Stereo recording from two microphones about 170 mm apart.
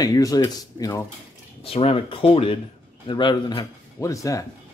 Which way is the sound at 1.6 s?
35° left (ahead or behind).